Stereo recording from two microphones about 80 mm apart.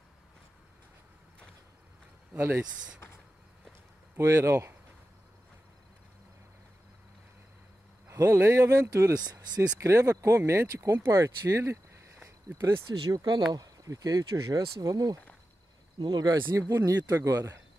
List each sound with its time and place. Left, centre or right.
2.3 s speech: right
4.2 s speech: right
8.3 s speech: right
9.2 s speech: right
9.8 s speech: right
13.1 s speech: right
13.5 s speech: right
16.5 s speech: right
17.4 s speech: right